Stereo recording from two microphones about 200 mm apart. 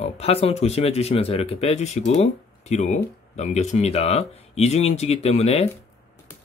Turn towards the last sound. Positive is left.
turn(degrees=30)  # may be behind; listen again after turning